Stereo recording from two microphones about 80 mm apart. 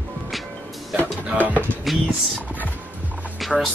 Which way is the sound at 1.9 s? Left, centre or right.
Centre.